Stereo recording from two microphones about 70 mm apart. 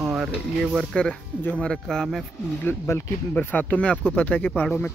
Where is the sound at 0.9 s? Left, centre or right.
Centre.